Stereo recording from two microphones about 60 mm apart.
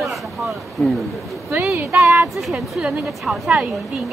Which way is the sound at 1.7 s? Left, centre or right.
Right.